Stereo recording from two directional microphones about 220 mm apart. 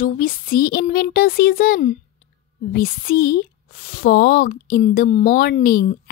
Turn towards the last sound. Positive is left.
turn(degrees=40)  # may be behind; listen again after turning